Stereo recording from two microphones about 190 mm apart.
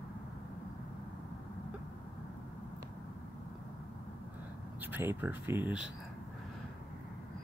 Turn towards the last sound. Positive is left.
turn(degrees=-10)  # may be behind; listen again after turning